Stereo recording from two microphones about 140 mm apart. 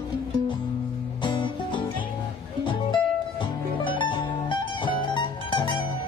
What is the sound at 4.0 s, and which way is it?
Music, 35° left (ahead or behind).